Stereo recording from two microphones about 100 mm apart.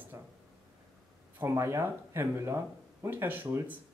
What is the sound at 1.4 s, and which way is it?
Speech, 25° right (ahead or behind).